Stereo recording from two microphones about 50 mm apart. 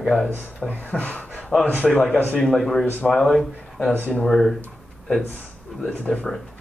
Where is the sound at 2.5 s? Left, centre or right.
Centre.